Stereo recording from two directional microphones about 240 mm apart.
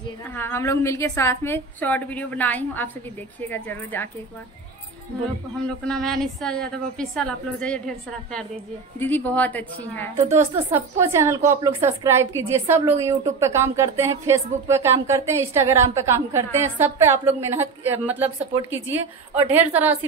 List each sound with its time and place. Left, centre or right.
0.3 s a woman's voice: centre
5.6 s a woman's voice: centre
10.2 s a woman's voice: centre